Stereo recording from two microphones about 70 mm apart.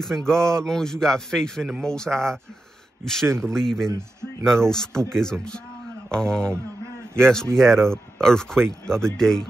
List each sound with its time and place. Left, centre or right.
0.0 s a man's voice: centre
3.3 s speech: right
3.5 s a man's voice: centre